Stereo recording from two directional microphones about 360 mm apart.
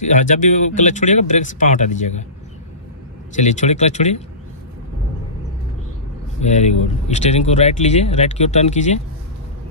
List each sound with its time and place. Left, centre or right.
0.0 s speech: left
3.3 s speech: centre
6.4 s speech: centre